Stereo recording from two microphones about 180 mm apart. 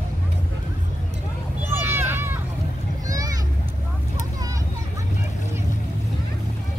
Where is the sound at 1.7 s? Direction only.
10° right (ahead or behind).